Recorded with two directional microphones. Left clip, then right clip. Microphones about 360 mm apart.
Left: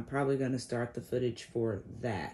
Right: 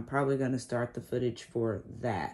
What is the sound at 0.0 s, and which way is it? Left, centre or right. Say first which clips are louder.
Speech: right 2 dB; centre.